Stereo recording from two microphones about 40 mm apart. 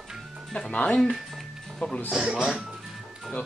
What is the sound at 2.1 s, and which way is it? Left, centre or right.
Speech, centre.